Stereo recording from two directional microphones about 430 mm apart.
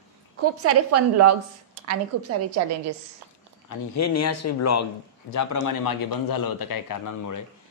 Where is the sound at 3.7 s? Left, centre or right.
Left.